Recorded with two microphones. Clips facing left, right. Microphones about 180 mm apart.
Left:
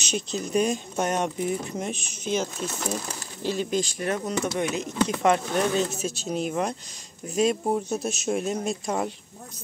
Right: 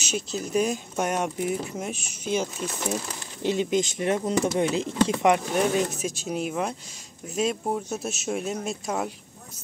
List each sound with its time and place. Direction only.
0.0 s speech: 5° right (ahead or behind)